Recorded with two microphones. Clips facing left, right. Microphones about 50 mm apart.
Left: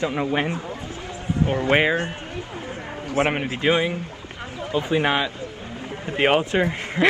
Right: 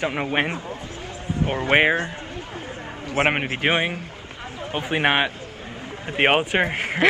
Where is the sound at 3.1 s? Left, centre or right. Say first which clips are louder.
Right 1 dB; right.